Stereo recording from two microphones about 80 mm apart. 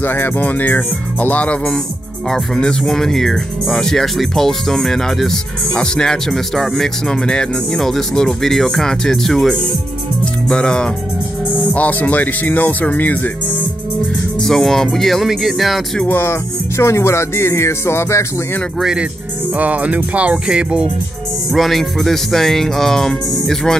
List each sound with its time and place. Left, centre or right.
0.0 s speech: left
14.4 s speech: centre
16.1 s speech: left
18.8 s music: centre
19.5 s music: centre
21.5 s speech: centre